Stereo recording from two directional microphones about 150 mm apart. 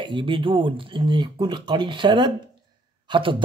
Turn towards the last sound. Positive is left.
turn(degrees=-35)  # may be behind; listen again after turning